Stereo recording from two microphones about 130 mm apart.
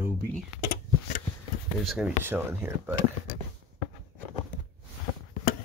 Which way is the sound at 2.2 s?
15° right (ahead or behind).